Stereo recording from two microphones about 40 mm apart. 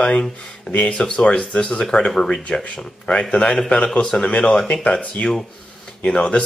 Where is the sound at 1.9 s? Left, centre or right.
Centre.